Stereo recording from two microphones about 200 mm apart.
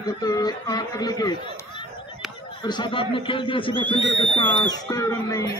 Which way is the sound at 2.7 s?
25° left (ahead or behind).